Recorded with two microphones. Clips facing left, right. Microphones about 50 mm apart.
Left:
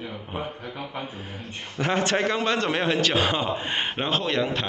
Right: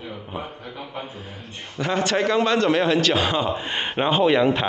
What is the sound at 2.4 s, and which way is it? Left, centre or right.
A man's voice, centre.